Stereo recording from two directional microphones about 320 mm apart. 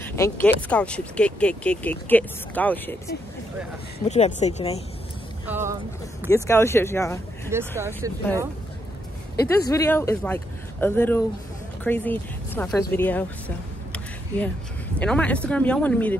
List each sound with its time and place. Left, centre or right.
0.0 s speech: centre
4.1 s speech: left
5.5 s speech: centre
6.2 s speech: centre
7.5 s speech: centre
9.5 s speech: centre
15.0 s speech: centre